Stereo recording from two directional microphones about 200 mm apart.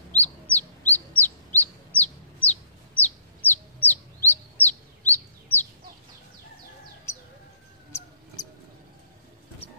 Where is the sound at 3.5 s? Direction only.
10° left (ahead or behind).